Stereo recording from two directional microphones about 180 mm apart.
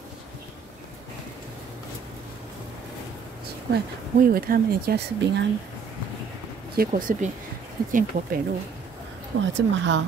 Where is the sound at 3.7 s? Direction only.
55° right (ahead or behind).